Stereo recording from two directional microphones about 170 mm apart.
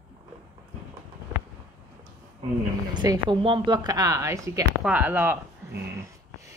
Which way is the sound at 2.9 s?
30° right (ahead or behind).